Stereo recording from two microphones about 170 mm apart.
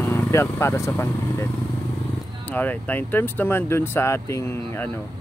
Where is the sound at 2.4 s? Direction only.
10° left (ahead or behind).